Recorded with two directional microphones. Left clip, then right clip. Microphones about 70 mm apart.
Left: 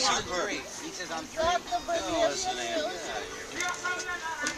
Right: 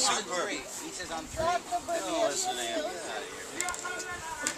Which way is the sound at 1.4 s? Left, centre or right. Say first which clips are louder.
Left 2 dB; left.